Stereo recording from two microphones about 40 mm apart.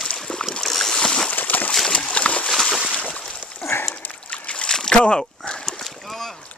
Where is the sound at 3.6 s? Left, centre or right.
Left.